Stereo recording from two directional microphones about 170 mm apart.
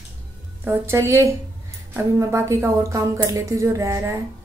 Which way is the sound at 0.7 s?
15° right (ahead or behind).